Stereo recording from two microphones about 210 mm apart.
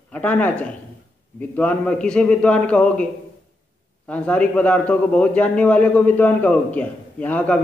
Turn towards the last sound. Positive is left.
turn(degrees=5)  # may be behind; listen again after turning